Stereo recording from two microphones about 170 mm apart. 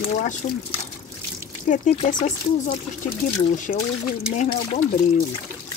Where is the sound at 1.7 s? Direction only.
50° left (ahead or behind).